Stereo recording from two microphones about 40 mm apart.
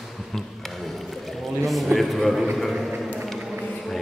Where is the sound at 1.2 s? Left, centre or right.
Centre.